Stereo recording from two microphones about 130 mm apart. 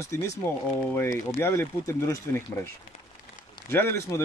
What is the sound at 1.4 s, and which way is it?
Speech, 20° left (ahead or behind).